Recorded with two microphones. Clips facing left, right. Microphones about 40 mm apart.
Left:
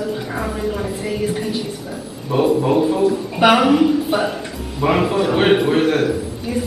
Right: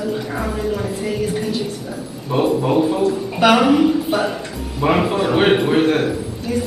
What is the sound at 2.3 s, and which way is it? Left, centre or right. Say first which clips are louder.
Speech: left 1 dB; centre.